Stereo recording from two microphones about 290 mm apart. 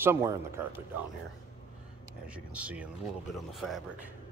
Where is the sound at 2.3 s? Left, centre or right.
Centre.